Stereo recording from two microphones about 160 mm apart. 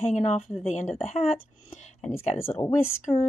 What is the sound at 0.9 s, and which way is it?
Speech, 40° left (ahead or behind).